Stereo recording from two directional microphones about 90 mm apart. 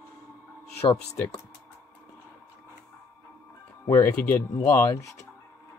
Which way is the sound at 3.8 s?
35° left (ahead or behind).